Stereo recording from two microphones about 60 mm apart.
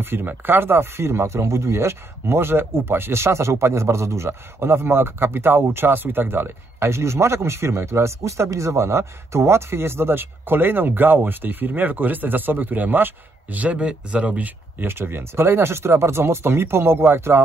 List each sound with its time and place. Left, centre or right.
0.0 s a man's voice: right
14.8 s speech: right